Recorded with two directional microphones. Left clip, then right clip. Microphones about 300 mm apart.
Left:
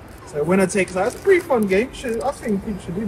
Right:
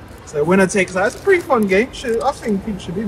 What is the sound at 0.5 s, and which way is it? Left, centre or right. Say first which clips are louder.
Speech: right 3 dB; centre.